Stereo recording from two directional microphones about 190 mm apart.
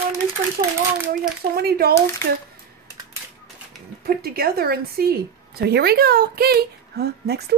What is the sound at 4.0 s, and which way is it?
A woman's voice, 55° right (ahead or behind).